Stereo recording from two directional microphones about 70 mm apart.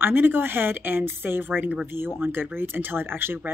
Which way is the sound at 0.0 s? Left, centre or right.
Right.